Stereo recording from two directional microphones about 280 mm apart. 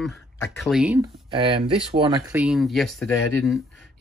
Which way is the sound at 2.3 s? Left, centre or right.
Centre.